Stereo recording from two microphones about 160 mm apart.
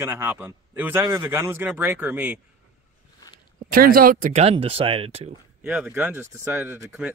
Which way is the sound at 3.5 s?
65° right (ahead or behind).